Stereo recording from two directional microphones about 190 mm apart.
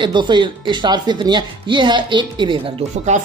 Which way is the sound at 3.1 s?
40° right (ahead or behind).